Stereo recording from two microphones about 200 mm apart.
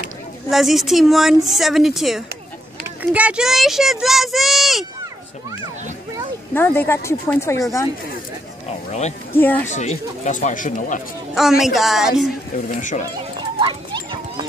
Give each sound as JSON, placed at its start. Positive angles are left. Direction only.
{"t": 0.5, "sound": "a child's voice", "side_deg": 0}
{"t": 6.5, "sound": "speech", "side_deg": 10}
{"t": 8.6, "sound": "speech", "side_deg": 35}
{"t": 9.4, "sound": "speech", "side_deg": 10}
{"t": 9.7, "sound": "speech", "side_deg": 35}
{"t": 11.3, "sound": "a child's voice", "side_deg": 0}
{"t": 12.5, "sound": "speech", "side_deg": 40}
{"t": 13.6, "sound": "a sound", "side_deg": -25}